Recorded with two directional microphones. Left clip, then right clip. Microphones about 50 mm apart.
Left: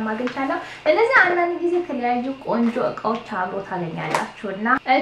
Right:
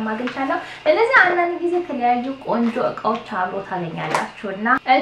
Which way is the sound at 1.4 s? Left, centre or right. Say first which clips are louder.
Right 1 dB; centre.